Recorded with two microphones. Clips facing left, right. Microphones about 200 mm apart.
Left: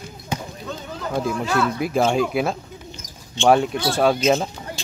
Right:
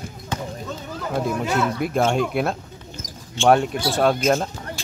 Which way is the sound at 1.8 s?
Centre (ahead or behind).